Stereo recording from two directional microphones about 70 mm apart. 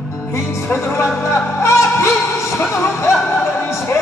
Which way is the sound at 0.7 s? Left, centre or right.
Left.